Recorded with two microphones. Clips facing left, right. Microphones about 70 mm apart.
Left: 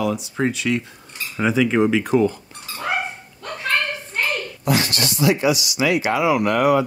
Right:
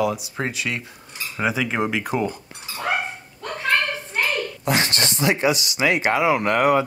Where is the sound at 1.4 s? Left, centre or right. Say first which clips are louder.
Left 5 dB; centre.